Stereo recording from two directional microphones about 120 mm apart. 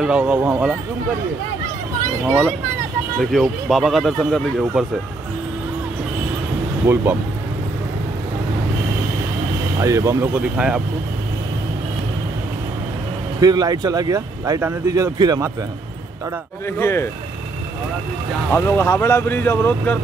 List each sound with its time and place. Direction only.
0.0 s speech: 5° right (ahead or behind)
3.2 s speech: centre (ahead or behind)
6.8 s speech: 20° right (ahead or behind)
9.8 s speech: 25° right (ahead or behind)
10.3 s speech: 10° right (ahead or behind)
13.4 s speech: 35° right (ahead or behind)
16.7 s speech: 20° left (ahead or behind)
18.5 s speech: 20° left (ahead or behind)